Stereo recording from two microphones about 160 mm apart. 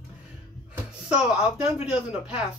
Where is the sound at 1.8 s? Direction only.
5° right (ahead or behind).